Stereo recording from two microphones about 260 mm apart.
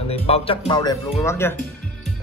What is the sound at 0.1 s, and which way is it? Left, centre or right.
A man's voice, left.